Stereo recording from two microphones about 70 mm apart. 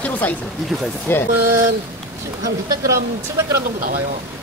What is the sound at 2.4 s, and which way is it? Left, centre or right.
Speech, right.